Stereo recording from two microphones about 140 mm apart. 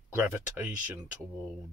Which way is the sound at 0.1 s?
15° right (ahead or behind).